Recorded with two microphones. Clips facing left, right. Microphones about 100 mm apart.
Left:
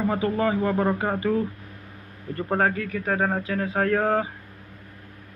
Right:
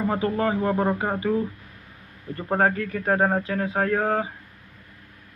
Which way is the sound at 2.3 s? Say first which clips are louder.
Right 1 dB; 25° right (ahead or behind).